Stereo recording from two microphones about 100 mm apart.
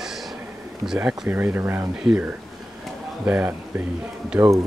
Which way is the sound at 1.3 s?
20° right (ahead or behind).